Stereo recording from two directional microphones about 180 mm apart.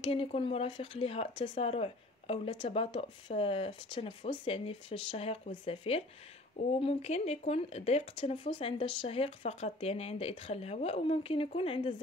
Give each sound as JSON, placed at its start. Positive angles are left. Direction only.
{"t": 0.0, "sound": "speech", "side_deg": 30}